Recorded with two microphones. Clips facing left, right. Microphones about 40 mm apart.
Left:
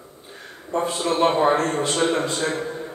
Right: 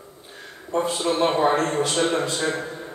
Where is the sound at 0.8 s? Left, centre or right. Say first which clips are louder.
Left 3 dB; left.